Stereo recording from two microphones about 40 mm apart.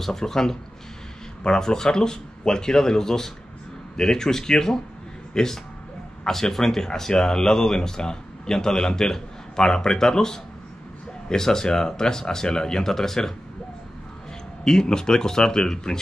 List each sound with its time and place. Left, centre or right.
0.0 s speech: centre
14.6 s speech: centre